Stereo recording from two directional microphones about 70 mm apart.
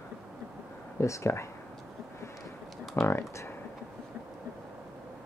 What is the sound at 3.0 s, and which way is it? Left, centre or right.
Speech, left.